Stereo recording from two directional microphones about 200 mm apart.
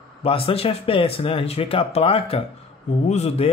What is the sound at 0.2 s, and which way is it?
Speech, 30° left (ahead or behind).